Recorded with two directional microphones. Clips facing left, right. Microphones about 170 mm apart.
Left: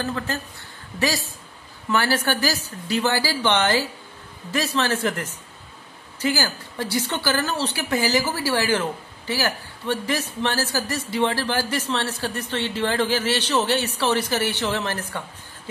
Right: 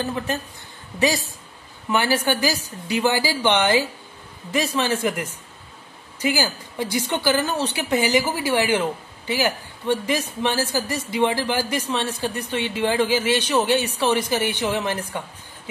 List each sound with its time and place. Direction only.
0.0 s a man's voice: 20° right (ahead or behind)